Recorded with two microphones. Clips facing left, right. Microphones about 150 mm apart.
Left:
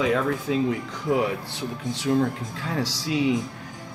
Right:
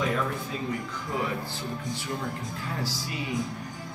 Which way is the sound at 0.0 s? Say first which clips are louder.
Left 6 dB; 90° left.